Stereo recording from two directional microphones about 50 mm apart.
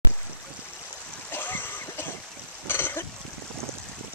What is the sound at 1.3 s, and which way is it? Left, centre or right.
Splash, left.